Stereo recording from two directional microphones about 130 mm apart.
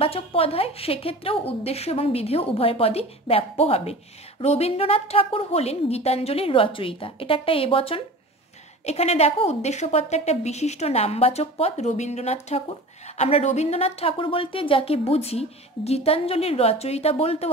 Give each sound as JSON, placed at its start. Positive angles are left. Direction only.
{"t": 0.0, "sound": "a woman's voice", "side_deg": 45}